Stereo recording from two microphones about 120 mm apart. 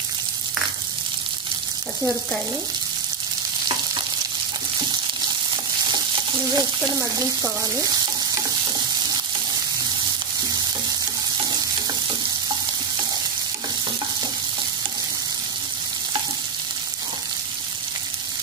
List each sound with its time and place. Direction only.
5.9 s frying: 35° right (ahead or behind)
7.0 s frying: 25° right (ahead or behind)